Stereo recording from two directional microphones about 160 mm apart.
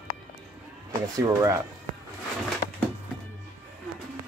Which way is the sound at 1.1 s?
20° right (ahead or behind).